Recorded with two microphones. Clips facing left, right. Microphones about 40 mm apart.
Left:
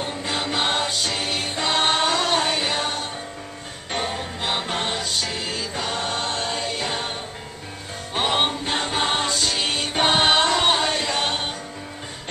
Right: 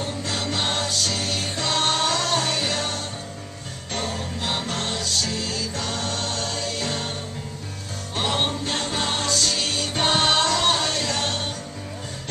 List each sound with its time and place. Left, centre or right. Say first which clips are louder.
0.0 s music: left 1 dB; left
8.1 s music: left 3 dB; left